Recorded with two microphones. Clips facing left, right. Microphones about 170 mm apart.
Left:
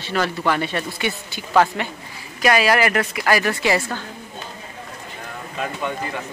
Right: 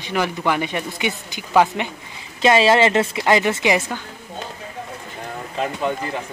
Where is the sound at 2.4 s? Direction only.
25° right (ahead or behind).